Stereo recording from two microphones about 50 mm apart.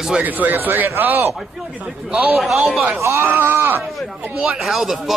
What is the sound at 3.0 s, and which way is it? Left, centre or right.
Speech, right.